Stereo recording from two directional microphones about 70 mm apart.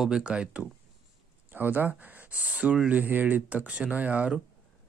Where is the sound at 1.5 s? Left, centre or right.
Right.